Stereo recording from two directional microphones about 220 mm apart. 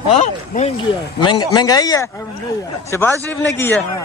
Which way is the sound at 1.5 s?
20° left (ahead or behind).